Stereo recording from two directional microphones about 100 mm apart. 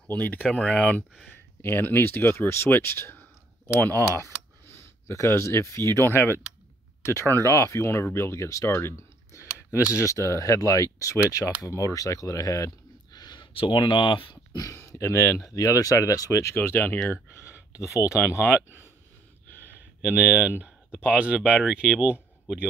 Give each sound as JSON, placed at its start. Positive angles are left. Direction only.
{"t": 0.0, "sound": "speech", "side_deg": 15}
{"t": 5.0, "sound": "speech", "side_deg": 30}
{"t": 8.7, "sound": "a sound", "side_deg": 30}
{"t": 9.9, "sound": "speech", "side_deg": 30}
{"t": 13.6, "sound": "speech", "side_deg": 55}
{"t": 14.5, "sound": "speech", "side_deg": 30}
{"t": 20.0, "sound": "speech", "side_deg": -10}